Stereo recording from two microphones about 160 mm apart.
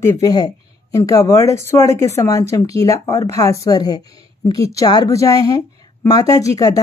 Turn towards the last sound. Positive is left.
turn(degrees=20)  # may be behind; listen again after turning